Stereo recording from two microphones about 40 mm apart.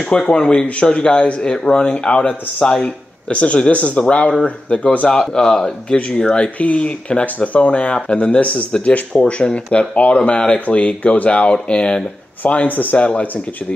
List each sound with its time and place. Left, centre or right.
0.1 s speech: centre
5.3 s speech: centre
12.4 s speech: left